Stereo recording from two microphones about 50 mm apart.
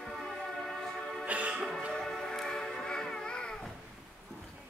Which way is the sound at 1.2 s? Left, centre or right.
Right.